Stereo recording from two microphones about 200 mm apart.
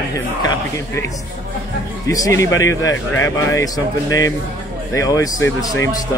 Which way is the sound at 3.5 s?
15° left (ahead or behind).